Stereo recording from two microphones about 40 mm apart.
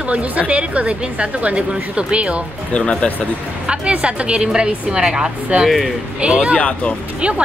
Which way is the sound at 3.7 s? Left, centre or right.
Right.